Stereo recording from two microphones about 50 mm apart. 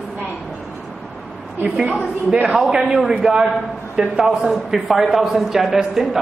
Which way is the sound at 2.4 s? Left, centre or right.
Centre.